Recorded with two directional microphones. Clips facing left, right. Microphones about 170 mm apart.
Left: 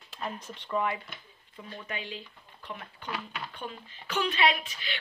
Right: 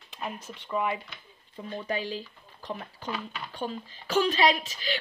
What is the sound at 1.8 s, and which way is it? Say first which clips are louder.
Speech: right 8 dB; 35° right (ahead or behind).